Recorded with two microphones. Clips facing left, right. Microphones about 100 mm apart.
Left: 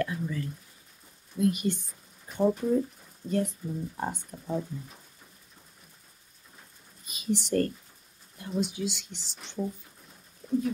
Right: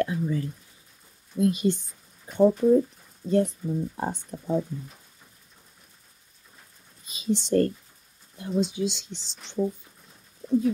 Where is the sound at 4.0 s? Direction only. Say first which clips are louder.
Right 3 dB; 30° right (ahead or behind).